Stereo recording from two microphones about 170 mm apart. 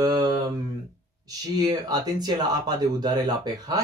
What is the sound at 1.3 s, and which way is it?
Speech, 20° right (ahead or behind).